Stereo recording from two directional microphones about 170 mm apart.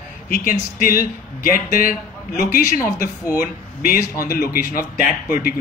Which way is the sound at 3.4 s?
55° left (ahead or behind).